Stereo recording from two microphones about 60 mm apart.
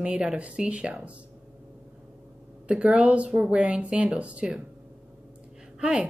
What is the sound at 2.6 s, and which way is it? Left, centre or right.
A woman's voice, centre.